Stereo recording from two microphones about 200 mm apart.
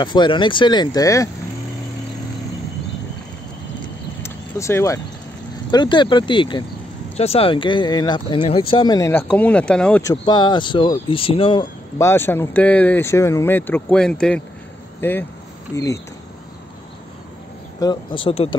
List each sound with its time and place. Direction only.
0.0 s speech: 20° left (ahead or behind)
4.2 s vehicle: 15° left (ahead or behind)
5.7 s speech: 20° left (ahead or behind); by 10.1 s 5° left (ahead or behind)
10.2 s speech: 20° left (ahead or behind)
12.0 s speech: 10° left (ahead or behind)
17.7 s speech: 20° left (ahead or behind)